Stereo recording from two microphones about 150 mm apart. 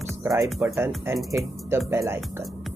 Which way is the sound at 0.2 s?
20° right (ahead or behind).